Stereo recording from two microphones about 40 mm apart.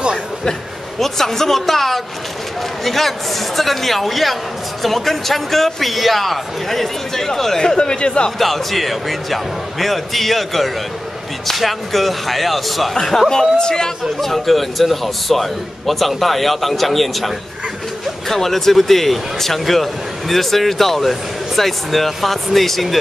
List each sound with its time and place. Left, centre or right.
0.9 s a man's voice: centre; by 8.3 s left
8.4 s a man's voice: centre
14.3 s speech: centre
18.3 s speech: centre